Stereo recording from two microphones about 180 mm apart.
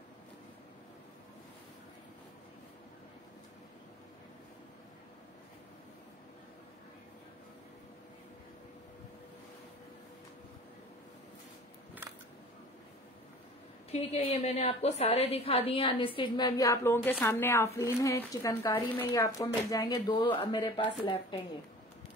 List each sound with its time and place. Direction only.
14.1 s a woman's voice: 35° left (ahead or behind)